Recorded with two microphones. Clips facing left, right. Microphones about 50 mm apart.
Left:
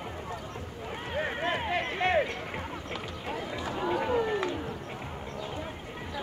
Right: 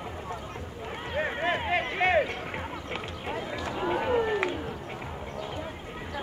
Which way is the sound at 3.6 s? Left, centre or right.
Right.